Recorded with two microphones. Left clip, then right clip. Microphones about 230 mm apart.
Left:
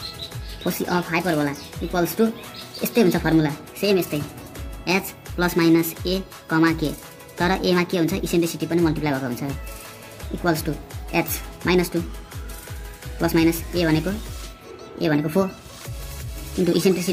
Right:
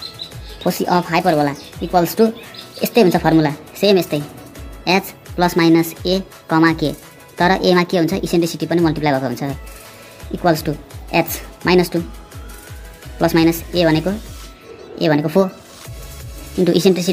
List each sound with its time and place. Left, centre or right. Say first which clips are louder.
0.7 s speech: right 7 dB; centre
13.2 s speech: right 5 dB; centre
16.6 s speech: right 6 dB; centre